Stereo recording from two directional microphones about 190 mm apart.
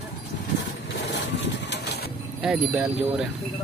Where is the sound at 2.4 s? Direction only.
5° right (ahead or behind).